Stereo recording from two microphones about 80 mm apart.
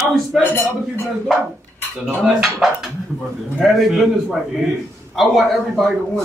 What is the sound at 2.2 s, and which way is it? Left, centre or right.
A man's voice, centre.